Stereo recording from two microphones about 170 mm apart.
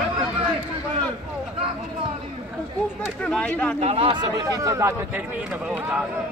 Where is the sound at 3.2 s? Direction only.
5° left (ahead or behind).